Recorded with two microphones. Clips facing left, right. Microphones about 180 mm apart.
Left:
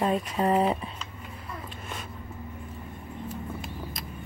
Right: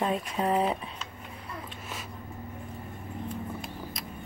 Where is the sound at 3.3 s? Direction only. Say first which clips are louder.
Left 1 dB; centre (ahead or behind).